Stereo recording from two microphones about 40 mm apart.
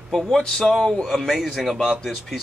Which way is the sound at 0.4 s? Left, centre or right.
Centre.